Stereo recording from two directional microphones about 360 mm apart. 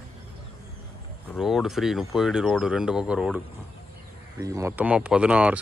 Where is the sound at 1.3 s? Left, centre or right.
Centre.